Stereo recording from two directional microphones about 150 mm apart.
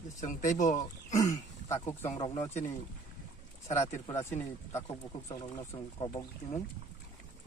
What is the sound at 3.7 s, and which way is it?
Speech, 20° left (ahead or behind).